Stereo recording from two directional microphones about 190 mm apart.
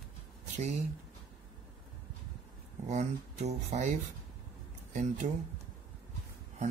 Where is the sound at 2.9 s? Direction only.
35° right (ahead or behind).